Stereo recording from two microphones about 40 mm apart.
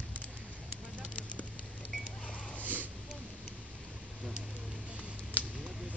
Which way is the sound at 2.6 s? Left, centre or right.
Right.